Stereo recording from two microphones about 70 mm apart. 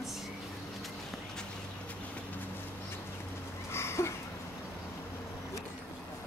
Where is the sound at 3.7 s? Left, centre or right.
Left.